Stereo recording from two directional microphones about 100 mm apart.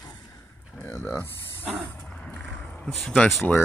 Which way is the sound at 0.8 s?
25° left (ahead or behind).